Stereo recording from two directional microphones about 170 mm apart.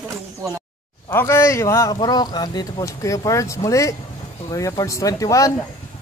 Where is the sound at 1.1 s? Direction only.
15° left (ahead or behind).